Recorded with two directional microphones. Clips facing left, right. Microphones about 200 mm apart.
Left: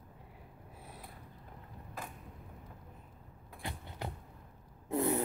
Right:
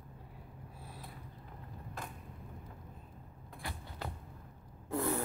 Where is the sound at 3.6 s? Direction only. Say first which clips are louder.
Left 2 dB; 20° left (ahead or behind).